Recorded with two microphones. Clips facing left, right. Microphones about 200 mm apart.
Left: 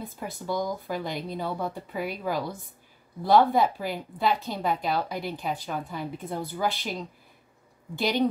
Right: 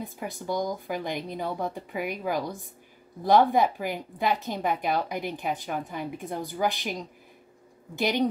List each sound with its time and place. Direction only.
0.0 s a woman's voice: 15° right (ahead or behind)